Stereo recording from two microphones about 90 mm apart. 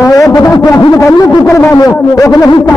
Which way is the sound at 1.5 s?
30° left (ahead or behind).